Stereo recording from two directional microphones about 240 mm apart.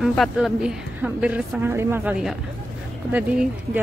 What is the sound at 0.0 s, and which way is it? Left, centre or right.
A woman's voice, centre.